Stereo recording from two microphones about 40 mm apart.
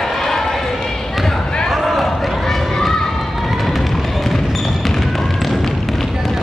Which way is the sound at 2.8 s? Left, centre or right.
Centre.